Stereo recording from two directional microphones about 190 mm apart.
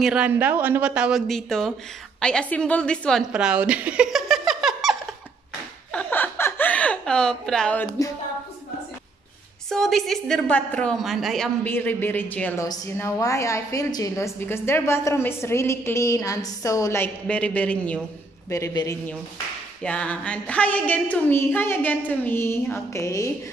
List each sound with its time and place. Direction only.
0.0 s a woman's voice: 5° right (ahead or behind)
5.9 s a sound: 5° left (ahead or behind)
9.7 s a woman's voice: centre (ahead or behind)
18.5 s a woman's voice: 15° left (ahead or behind)
19.8 s a woman's voice: 5° left (ahead or behind)